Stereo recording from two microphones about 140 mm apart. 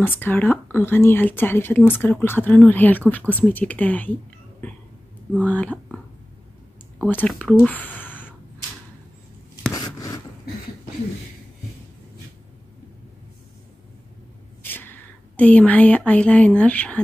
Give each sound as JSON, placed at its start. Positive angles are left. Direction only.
{"t": 0.0, "sound": "speech", "side_deg": 15}
{"t": 4.6, "sound": "throat clearing", "side_deg": 10}
{"t": 5.4, "sound": "speech", "side_deg": 10}
{"t": 7.0, "sound": "speech", "side_deg": 10}
{"t": 9.7, "sound": "a sound", "side_deg": 25}
{"t": 14.6, "sound": "a sound", "side_deg": 15}
{"t": 16.1, "sound": "speech", "side_deg": 10}